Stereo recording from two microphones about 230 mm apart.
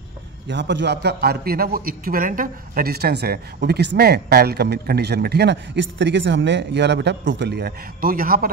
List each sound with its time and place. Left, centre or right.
0.5 s a man's voice: right